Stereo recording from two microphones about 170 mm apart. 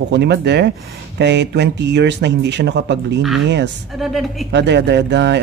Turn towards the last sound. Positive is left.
turn(degrees=-90)